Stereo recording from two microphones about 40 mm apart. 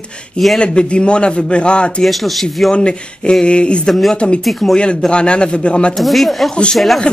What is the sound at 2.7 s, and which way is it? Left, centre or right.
A man's voice, left.